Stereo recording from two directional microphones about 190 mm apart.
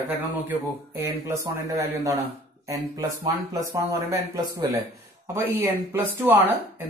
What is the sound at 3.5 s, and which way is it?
Speech, 15° right (ahead or behind).